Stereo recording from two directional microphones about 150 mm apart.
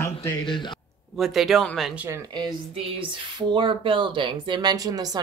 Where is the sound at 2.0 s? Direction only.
20° right (ahead or behind).